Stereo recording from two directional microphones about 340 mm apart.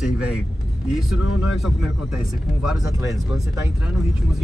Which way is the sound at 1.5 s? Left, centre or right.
Centre.